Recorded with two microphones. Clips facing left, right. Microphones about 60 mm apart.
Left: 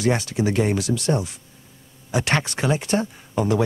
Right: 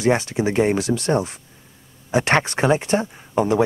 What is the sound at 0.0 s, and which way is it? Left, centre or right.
Speech, right.